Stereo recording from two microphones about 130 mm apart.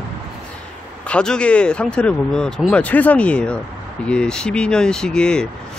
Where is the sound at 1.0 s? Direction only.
5° left (ahead or behind).